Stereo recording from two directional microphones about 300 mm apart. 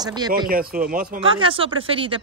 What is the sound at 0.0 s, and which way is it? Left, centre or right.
Speech, centre.